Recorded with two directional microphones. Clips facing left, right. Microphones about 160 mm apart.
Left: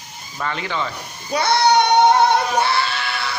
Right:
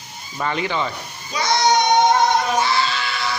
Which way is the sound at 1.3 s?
60° left (ahead or behind).